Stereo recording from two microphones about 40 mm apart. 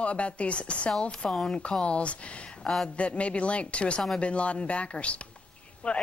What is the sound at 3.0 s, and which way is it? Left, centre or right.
A woman's voice, left.